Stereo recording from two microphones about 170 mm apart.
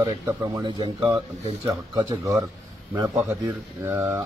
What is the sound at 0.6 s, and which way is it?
A man's voice, 30° right (ahead or behind).